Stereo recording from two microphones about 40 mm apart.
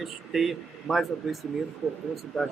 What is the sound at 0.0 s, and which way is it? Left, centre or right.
Speech, centre.